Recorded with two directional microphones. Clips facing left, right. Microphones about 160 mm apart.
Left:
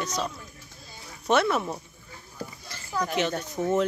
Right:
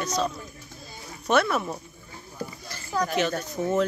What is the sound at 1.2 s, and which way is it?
Speech, 25° left (ahead or behind).